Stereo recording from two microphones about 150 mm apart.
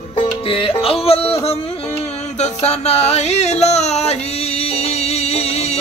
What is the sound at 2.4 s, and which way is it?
Music, 45° left (ahead or behind).